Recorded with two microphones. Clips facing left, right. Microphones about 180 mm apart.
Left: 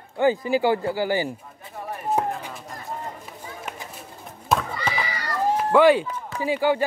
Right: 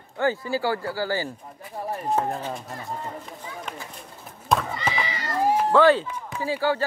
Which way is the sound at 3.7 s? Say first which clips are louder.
Left 1 dB; 5° left (ahead or behind).